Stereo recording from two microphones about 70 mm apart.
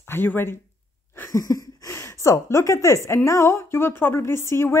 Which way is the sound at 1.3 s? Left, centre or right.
Left.